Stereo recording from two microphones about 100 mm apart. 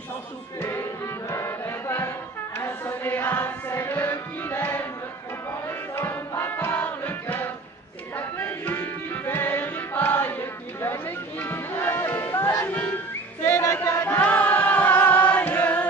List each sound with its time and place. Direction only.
0.6 s music: 25° left (ahead or behind)
12.6 s whistling: 20° left (ahead or behind)
13.5 s music: 25° left (ahead or behind)
14.2 s chant: 15° left (ahead or behind)